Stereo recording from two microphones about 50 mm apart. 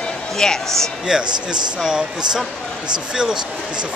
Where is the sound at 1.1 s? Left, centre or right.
Centre.